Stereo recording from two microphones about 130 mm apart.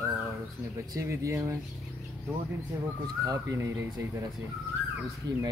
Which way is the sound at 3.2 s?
25° right (ahead or behind).